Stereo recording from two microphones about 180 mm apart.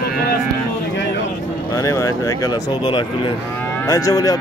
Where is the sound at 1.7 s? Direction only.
15° left (ahead or behind).